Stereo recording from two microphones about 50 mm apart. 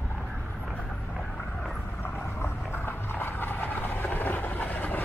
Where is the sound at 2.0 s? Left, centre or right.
Left.